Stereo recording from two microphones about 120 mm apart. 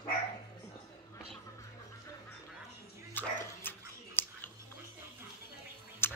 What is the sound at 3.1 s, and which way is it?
Dog, 15° left (ahead or behind).